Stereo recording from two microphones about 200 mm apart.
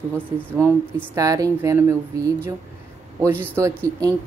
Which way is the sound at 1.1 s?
15° right (ahead or behind).